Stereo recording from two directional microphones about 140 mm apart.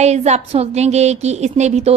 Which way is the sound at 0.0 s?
55° right (ahead or behind).